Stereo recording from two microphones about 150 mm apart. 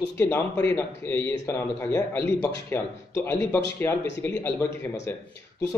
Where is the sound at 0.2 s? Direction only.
20° left (ahead or behind).